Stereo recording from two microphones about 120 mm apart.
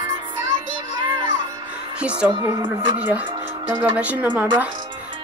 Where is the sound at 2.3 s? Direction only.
35° right (ahead or behind).